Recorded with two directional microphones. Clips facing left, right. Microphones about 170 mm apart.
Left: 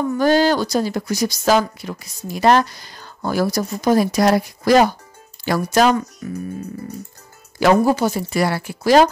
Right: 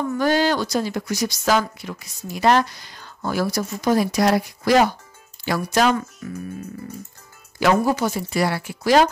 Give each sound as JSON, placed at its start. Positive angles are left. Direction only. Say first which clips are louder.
{"t": 0.2, "sound": "speech", "louder": "left 4 dB", "side_deg": 35}
{"t": 6.2, "sound": "speech", "louder": "left 4 dB", "side_deg": 20}
{"t": 7.6, "sound": "speech", "louder": "left 4 dB", "side_deg": 30}
{"t": 8.3, "sound": "speech", "louder": "left 2 dB", "side_deg": 45}